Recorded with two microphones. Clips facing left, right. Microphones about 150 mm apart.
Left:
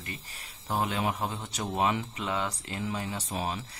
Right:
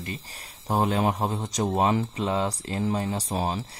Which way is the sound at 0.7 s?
40° right (ahead or behind).